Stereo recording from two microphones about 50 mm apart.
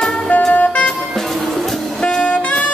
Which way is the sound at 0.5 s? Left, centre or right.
Left.